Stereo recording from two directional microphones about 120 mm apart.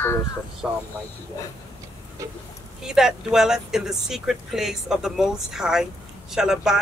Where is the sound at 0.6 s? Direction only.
5° right (ahead or behind).